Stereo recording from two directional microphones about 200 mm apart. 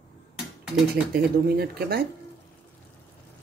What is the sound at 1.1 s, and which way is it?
Speech, 50° right (ahead or behind).